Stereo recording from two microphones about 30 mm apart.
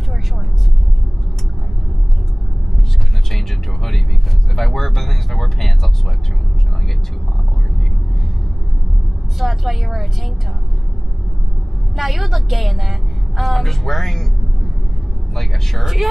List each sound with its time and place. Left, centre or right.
3.3 s a sound: centre
4.6 s vehicle: centre
9.4 s a woman's voice: centre
12.0 s a woman's voice: centre
15.8 s a woman's voice: centre